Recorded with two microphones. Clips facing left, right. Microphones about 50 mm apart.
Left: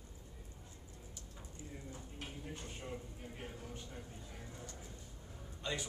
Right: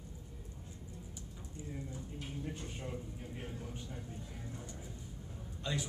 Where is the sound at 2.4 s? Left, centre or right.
Centre.